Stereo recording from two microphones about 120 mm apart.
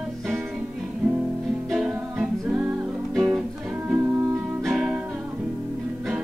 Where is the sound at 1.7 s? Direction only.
5° right (ahead or behind).